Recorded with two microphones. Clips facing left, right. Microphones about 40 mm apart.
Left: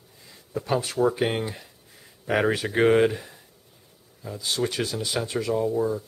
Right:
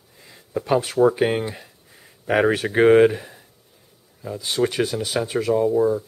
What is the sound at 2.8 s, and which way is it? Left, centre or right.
Speech, centre.